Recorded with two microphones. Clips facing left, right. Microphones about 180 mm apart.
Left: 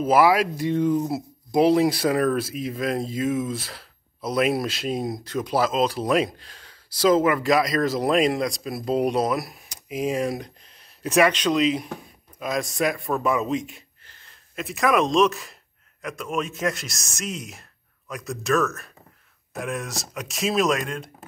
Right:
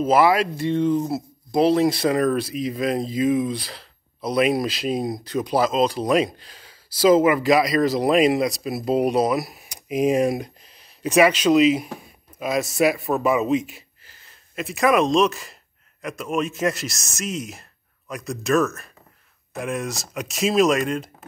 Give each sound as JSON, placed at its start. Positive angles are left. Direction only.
{"t": 0.0, "sound": "speech", "side_deg": 10}
{"t": 9.7, "sound": "speech", "side_deg": -15}
{"t": 11.0, "sound": "speech", "side_deg": 0}